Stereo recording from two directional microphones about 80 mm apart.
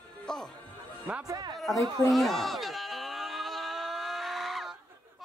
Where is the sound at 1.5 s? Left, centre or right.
Centre.